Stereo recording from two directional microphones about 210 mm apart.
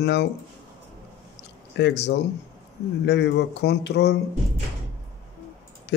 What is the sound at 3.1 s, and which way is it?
Speech, 55° left (ahead or behind).